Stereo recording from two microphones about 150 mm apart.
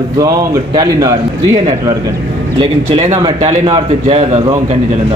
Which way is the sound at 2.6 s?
45° right (ahead or behind).